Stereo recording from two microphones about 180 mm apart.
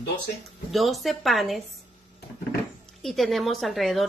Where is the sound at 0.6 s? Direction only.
Centre (ahead or behind).